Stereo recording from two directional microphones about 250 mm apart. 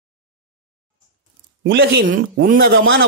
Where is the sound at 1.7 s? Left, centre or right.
Right.